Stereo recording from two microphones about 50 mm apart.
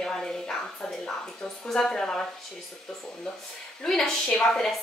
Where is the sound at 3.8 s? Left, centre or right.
Centre.